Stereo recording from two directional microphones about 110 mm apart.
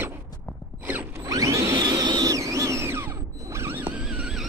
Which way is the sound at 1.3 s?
30° right (ahead or behind).